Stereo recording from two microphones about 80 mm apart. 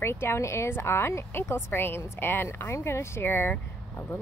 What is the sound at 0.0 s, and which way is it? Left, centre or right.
Speech, left.